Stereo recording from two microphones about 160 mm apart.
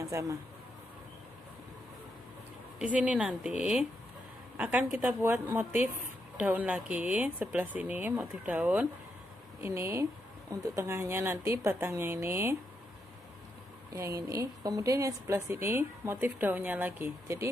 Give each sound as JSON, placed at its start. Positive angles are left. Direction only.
{"t": 0.0, "sound": "speech", "side_deg": -20}
{"t": 2.8, "sound": "a woman's voice", "side_deg": -10}
{"t": 13.9, "sound": "a woman's voice", "side_deg": -20}